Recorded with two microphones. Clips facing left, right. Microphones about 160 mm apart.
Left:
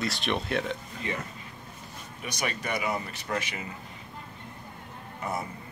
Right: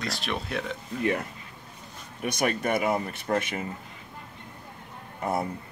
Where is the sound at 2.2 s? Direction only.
55° right (ahead or behind).